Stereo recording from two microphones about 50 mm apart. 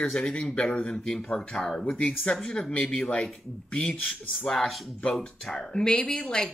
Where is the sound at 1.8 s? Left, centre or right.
Left.